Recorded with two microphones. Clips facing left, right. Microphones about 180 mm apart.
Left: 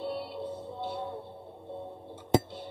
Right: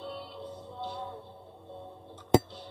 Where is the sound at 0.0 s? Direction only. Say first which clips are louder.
Left 6 dB; 10° left (ahead or behind).